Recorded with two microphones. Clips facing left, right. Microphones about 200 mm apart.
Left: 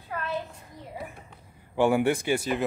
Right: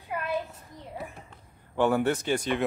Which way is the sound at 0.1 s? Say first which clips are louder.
Right 1 dB; 15° right (ahead or behind).